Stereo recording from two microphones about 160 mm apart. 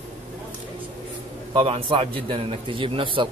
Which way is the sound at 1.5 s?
35° right (ahead or behind).